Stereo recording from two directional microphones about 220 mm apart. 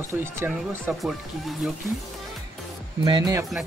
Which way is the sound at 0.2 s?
10° right (ahead or behind).